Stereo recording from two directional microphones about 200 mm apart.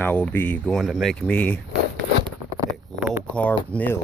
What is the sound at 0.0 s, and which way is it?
Speech, 10° left (ahead or behind).